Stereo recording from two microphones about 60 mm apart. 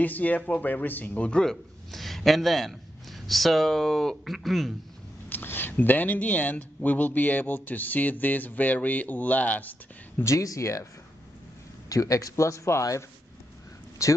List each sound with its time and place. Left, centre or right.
0.0 s speech: left
1.3 s a man's voice: centre
5.3 s speech: left
10.2 s speech: left
11.9 s speech: left
14.0 s speech: left